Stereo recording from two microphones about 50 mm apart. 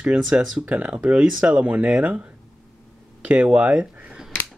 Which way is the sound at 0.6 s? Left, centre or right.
Right.